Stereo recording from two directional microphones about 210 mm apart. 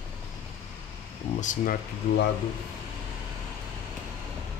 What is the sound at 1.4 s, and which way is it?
Speech, 40° left (ahead or behind).